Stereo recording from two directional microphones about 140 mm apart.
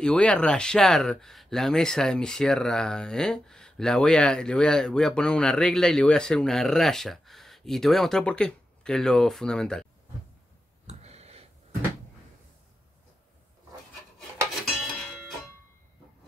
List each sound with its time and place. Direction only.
0.0 s speech: 5° left (ahead or behind)
10.9 s a sound: 50° right (ahead or behind)
14.8 s music: centre (ahead or behind)